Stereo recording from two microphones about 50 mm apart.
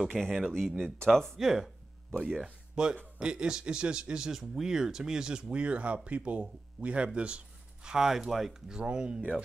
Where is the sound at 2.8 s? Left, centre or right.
Centre.